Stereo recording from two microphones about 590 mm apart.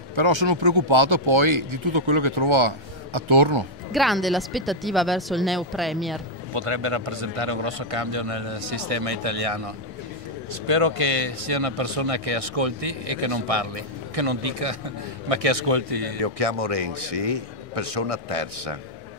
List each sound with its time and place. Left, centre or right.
0.1 s speech: right
3.9 s speech: centre
6.5 s speech: right